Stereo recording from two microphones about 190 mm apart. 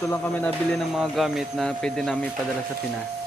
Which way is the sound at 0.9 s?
Centre (ahead or behind).